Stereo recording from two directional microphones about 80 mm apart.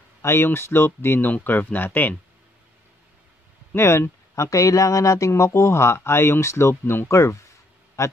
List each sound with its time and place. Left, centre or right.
0.2 s speech: left
3.7 s speech: left